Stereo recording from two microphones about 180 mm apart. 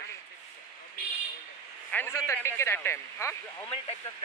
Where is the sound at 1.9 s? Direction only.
15° left (ahead or behind).